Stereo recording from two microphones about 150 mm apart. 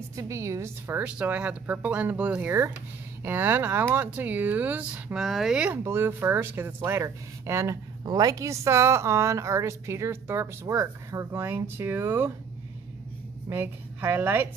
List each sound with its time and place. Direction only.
0.1 s speech: 20° right (ahead or behind)
13.5 s a woman's voice: 15° right (ahead or behind)